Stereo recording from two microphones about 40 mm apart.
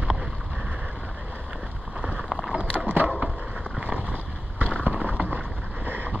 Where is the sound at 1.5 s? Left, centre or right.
Right.